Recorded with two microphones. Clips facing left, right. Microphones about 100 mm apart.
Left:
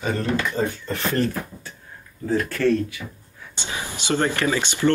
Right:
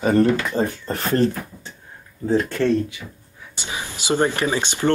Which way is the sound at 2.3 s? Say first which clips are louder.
Right 2 dB; 25° right (ahead or behind).